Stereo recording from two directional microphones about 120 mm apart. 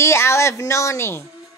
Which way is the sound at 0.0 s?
20° left (ahead or behind).